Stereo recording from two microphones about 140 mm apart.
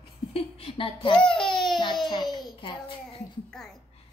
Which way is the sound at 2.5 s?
35° left (ahead or behind).